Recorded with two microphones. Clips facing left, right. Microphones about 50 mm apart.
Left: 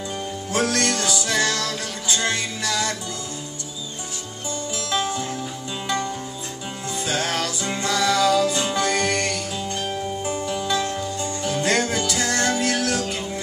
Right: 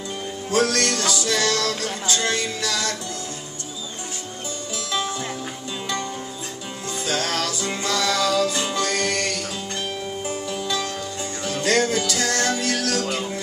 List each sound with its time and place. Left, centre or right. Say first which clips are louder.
0.5 s music: right 2 dB; centre
4.9 s music: left 2 dB; centre
7.1 s music: even; centre